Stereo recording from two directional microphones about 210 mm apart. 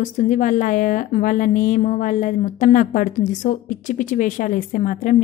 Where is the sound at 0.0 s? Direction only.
35° left (ahead or behind).